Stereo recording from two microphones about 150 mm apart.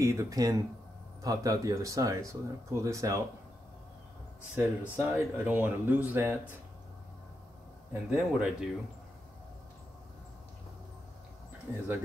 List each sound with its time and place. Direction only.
0.0 s speech: 20° right (ahead or behind)
4.6 s speech: 10° right (ahead or behind)
7.9 s speech: 15° right (ahead or behind)